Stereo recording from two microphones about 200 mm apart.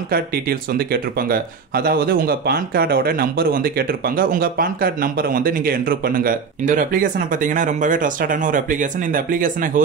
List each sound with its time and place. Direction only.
0.1 s speech: 50° right (ahead or behind)